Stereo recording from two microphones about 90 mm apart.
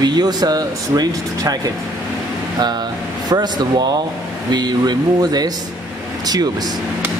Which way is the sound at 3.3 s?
50° right (ahead or behind).